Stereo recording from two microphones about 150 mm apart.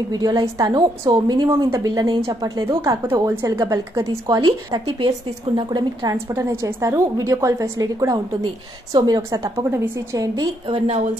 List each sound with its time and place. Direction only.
0.1 s a woman's voice: 25° right (ahead or behind)
10.7 s a woman's voice: 45° right (ahead or behind)